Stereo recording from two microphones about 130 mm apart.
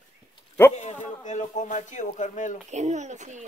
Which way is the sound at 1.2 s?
65° left (ahead or behind).